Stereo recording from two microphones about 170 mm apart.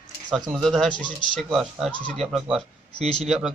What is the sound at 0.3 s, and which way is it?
Speech, centre (ahead or behind).